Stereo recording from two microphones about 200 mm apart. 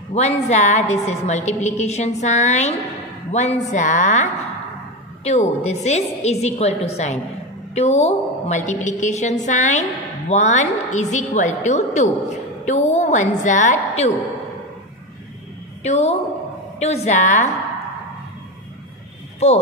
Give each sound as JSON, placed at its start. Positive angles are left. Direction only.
{"t": 0.1, "sound": "a woman's voice", "side_deg": 35}
{"t": 15.8, "sound": "a woman's voice", "side_deg": 35}
{"t": 19.4, "sound": "a woman's voice", "side_deg": 30}